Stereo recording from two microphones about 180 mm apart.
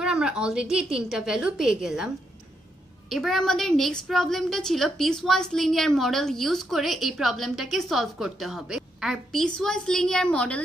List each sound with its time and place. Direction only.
0.0 s a woman's voice: 5° right (ahead or behind)
3.1 s a woman's voice: centre (ahead or behind)